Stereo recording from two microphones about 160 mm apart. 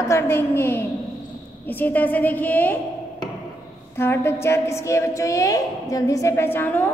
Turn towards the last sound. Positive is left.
turn(degrees=10)  # may be behind; listen again after turning